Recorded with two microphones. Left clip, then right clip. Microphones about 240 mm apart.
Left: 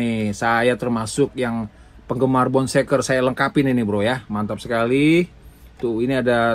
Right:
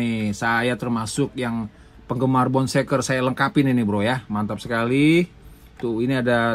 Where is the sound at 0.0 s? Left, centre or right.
Right.